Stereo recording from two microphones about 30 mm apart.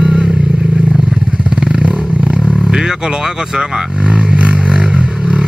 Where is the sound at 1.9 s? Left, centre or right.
Right.